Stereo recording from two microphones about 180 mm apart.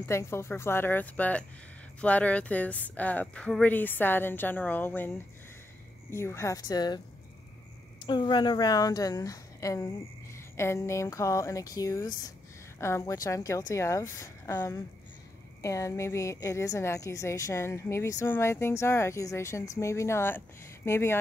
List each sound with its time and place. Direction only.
0.0 s a woman's voice: 15° left (ahead or behind)
8.1 s a woman's voice: 25° left (ahead or behind)